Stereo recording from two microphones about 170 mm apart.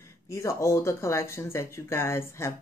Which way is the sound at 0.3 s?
20° left (ahead or behind).